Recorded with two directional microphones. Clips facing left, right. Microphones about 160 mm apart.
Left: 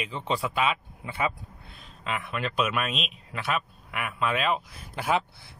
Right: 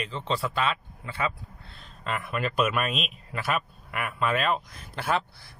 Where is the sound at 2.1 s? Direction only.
Centre (ahead or behind).